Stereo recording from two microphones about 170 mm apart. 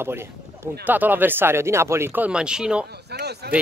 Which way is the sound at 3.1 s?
75° right (ahead or behind).